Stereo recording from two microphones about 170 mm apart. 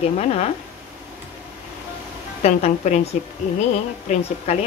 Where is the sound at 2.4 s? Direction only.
40° left (ahead or behind).